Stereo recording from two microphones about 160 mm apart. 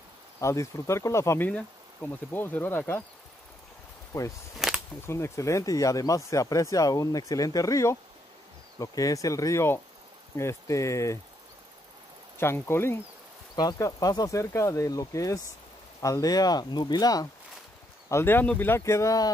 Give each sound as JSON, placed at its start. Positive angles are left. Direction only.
{"t": 0.4, "sound": "speech", "side_deg": 20}
{"t": 4.1, "sound": "speech", "side_deg": 15}
{"t": 4.6, "sound": "a sound", "side_deg": 0}
{"t": 5.0, "sound": "speech", "side_deg": 15}
{"t": 12.4, "sound": "speech", "side_deg": 15}